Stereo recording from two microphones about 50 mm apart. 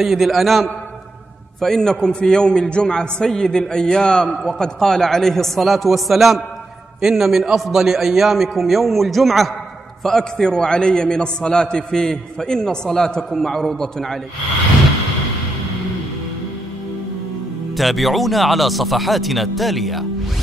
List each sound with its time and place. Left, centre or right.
0.0 s a man's voice: centre
1.6 s a man's voice: centre
10.3 s a man's voice: centre
17.7 s a man's voice: centre